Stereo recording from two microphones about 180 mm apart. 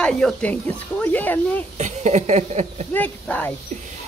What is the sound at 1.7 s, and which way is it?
Speech, 40° right (ahead or behind).